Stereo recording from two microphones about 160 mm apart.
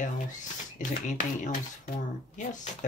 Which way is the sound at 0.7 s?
55° left (ahead or behind).